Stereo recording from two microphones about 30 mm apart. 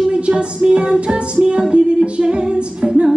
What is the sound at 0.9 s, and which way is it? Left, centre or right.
Music, right.